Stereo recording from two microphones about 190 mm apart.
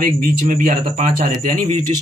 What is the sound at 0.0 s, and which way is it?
A man's voice, 45° right (ahead or behind).